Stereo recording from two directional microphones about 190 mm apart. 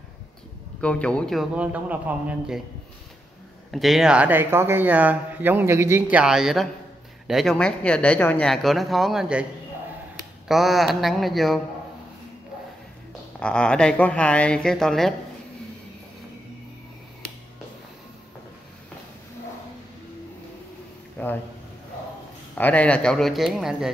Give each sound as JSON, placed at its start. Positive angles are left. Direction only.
{"t": 0.7, "sound": "speech", "side_deg": 5}
{"t": 3.7, "sound": "speech", "side_deg": 0}
{"t": 10.5, "sound": "speech", "side_deg": 0}
{"t": 13.4, "sound": "speech", "side_deg": 5}
{"t": 21.2, "sound": "a sound", "side_deg": 10}
{"t": 22.6, "sound": "speech", "side_deg": 5}